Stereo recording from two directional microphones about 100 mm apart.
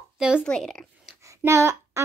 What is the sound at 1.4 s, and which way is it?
Child singing, 30° right (ahead or behind).